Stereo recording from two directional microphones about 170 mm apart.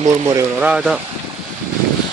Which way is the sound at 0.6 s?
5° right (ahead or behind).